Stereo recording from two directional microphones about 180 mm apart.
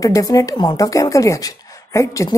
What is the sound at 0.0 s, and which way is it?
A woman's voice, 20° left (ahead or behind).